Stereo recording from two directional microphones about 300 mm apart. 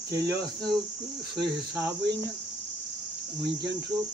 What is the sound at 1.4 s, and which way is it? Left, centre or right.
Cricket, centre.